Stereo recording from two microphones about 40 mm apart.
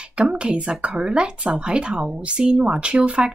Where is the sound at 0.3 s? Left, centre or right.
Right.